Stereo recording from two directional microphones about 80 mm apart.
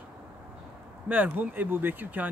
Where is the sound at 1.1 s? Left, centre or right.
Right.